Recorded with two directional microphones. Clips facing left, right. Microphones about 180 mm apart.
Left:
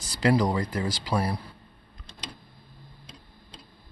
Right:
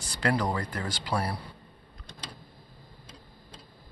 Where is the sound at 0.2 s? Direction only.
15° left (ahead or behind).